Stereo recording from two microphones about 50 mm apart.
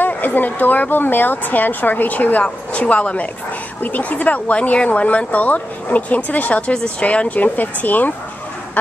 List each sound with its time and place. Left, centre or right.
0.0 s speech: left